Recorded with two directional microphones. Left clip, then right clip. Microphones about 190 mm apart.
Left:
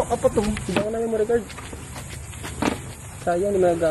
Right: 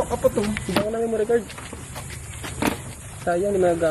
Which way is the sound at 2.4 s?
40° right (ahead or behind).